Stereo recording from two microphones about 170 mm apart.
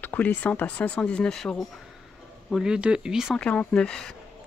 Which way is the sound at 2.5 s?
5° right (ahead or behind).